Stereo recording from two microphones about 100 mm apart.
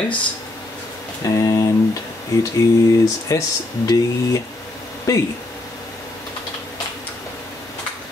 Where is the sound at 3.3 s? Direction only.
35° left (ahead or behind).